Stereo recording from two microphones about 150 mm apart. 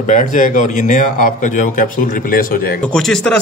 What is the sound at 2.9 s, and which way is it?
Speech, 5° left (ahead or behind).